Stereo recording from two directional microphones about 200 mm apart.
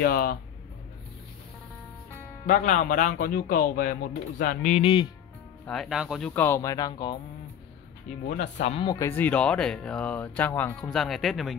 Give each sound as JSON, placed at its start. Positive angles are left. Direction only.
{"t": 0.0, "sound": "speech", "side_deg": 50}
{"t": 2.4, "sound": "speech", "side_deg": 40}
{"t": 4.7, "sound": "speech", "side_deg": 25}
{"t": 5.7, "sound": "speech", "side_deg": 0}
{"t": 8.3, "sound": "speech", "side_deg": 35}
{"t": 8.9, "sound": "speech", "side_deg": 10}